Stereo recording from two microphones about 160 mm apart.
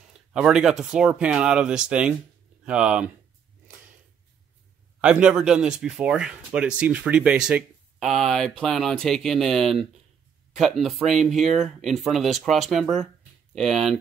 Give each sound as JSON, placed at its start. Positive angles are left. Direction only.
{"t": 0.3, "sound": "speech", "side_deg": -5}
{"t": 5.0, "sound": "speech", "side_deg": -5}